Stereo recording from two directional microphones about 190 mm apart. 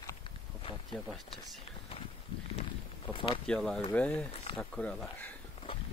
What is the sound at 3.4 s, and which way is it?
Speech, 5° left (ahead or behind).